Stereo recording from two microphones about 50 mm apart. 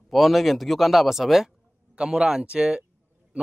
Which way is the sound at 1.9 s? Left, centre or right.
Centre.